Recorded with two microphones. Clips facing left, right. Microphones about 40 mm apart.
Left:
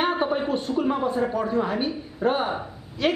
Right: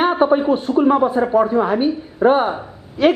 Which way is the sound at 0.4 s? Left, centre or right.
Centre.